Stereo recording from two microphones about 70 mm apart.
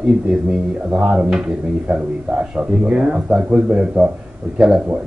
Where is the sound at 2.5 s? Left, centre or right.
Centre.